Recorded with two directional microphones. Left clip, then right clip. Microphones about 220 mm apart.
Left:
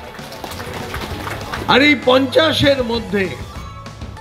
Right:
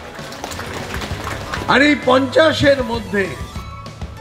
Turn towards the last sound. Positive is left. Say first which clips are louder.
# left 1 dB
turn(degrees=50)  # may be behind; listen again after turning